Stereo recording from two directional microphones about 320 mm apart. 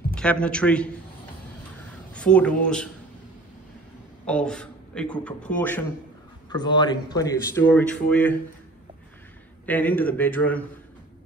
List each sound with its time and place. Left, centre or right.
0.1 s a man's voice: centre
2.1 s speech: centre
4.3 s a man's voice: centre
6.5 s speech: centre
9.7 s speech: centre